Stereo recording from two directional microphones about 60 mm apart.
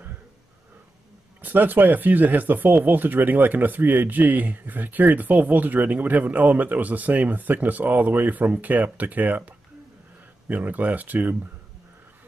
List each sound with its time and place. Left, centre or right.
1.4 s speech: right
10.5 s speech: right